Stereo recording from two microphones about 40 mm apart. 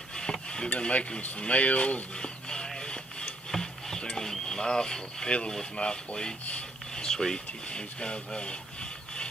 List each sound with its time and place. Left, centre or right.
0.1 s cutlery: left
0.7 s speech: left
1.5 s a sound: left; by 5.3 s centre
5.8 s speech: left
7.0 s a sound: centre
7.7 s speech: left